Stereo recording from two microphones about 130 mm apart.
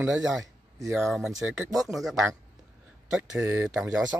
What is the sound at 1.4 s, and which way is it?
Speech, 15° right (ahead or behind).